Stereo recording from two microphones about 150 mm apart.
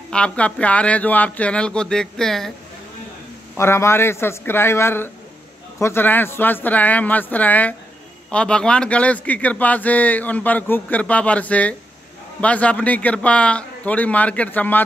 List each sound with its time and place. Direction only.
0.1 s speech: 10° left (ahead or behind)
3.5 s speech: 15° left (ahead or behind)